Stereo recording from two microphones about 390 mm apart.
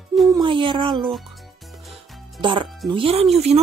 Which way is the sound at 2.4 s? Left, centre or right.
Centre.